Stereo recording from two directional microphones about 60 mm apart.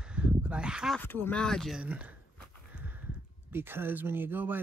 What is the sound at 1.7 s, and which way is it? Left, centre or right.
Speech, right.